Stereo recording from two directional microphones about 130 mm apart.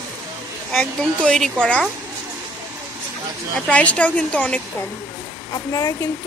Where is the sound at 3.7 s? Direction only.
10° left (ahead or behind).